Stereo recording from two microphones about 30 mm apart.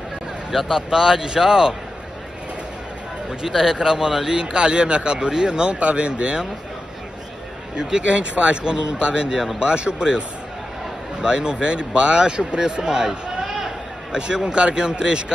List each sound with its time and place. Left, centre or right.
0.5 s speech: centre
3.7 s speech: right
4.4 s speech: right
5.7 s speech: right
7.7 s speech: right
11.1 s speech: right
13.5 s a sound: centre
14.1 s speech: right